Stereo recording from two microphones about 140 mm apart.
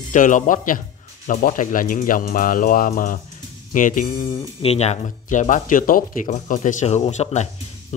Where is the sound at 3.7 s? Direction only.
70° left (ahead or behind).